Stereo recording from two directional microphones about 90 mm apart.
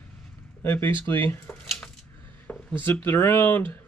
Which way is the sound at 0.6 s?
25° left (ahead or behind).